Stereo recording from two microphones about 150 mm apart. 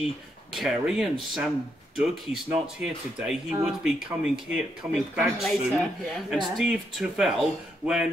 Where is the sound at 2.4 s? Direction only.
5° right (ahead or behind).